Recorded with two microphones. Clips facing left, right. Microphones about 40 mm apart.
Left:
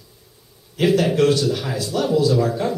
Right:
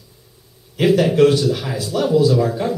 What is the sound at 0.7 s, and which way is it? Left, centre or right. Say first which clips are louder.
Speech: right 3 dB; centre.